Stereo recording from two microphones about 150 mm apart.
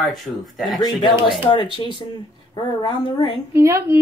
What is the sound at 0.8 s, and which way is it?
A woman's voice, 30° left (ahead or behind).